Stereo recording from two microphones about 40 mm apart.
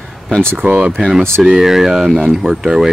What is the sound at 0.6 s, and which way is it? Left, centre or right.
Speech, right.